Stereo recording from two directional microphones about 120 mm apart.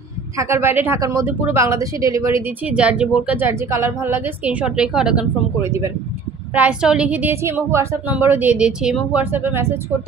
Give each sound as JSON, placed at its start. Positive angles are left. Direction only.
{"t": 0.4, "sound": "a woman's voice", "side_deg": -20}
{"t": 0.9, "sound": "speech", "side_deg": -25}
{"t": 2.6, "sound": "a woman's voice", "side_deg": -10}
{"t": 5.6, "sound": "speech", "side_deg": -25}
{"t": 6.5, "sound": "a woman's voice", "side_deg": -10}